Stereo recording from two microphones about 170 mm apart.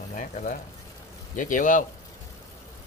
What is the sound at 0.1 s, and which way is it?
Speech, 50° left (ahead or behind).